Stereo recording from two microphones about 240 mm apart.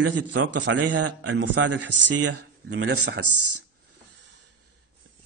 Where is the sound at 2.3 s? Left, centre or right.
Right.